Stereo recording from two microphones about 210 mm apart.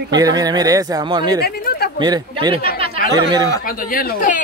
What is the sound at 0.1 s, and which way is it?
Speech, 20° right (ahead or behind).